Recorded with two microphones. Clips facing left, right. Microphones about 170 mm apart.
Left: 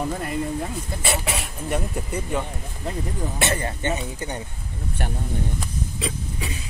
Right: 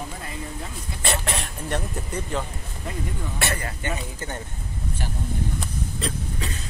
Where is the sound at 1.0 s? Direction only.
10° left (ahead or behind).